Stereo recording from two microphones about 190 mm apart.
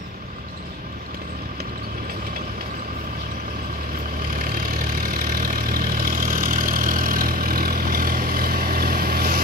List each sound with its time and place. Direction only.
4.4 s vehicle: 45° right (ahead or behind)